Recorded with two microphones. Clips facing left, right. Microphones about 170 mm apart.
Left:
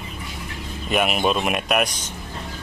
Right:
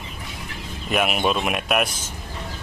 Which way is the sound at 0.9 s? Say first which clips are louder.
Left 1 dB; centre (ahead or behind).